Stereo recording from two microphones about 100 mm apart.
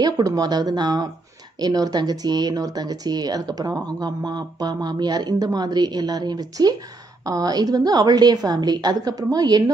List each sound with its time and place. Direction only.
0.0 s speech: 40° right (ahead or behind)